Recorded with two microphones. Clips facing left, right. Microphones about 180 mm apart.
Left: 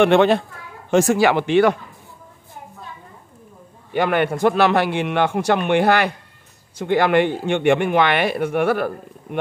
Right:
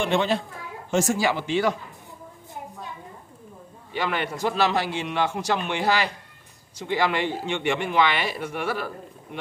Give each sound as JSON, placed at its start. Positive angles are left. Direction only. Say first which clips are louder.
{"t": 0.0, "sound": "speech", "louder": "left 9 dB", "side_deg": 60}
{"t": 3.9, "sound": "speech", "louder": "left 9 dB", "side_deg": 55}